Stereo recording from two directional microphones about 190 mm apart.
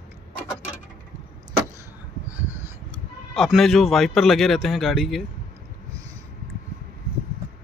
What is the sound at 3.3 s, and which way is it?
Speech, centre (ahead or behind).